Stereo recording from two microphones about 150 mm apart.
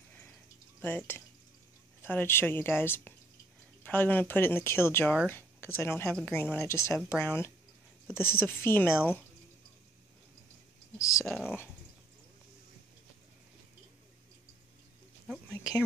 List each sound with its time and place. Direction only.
0.7 s a woman's voice: 10° left (ahead or behind)
11.0 s speech: 20° left (ahead or behind)
11.2 s speech: 5° right (ahead or behind)